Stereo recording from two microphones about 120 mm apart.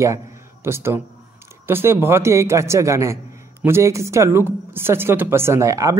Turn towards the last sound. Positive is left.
turn(degrees=-25)  # may be behind; listen again after turning